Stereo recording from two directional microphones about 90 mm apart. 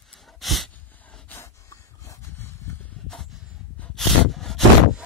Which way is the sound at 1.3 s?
30° left (ahead or behind).